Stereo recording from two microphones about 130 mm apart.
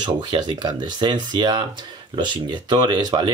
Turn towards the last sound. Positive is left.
turn(degrees=-35)  # may be behind; listen again after turning